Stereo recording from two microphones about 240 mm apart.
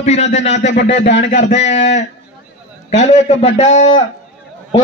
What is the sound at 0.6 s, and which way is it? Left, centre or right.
Speech, left.